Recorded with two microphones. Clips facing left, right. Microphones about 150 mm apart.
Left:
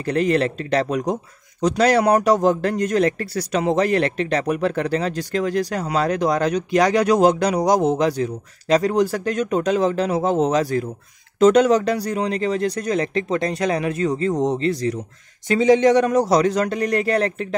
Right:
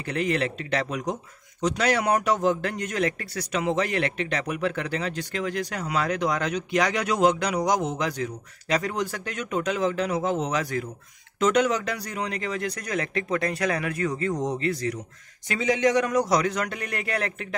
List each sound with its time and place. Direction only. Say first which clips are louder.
0.0 s a man's voice: left 7 dB; 40° left (ahead or behind)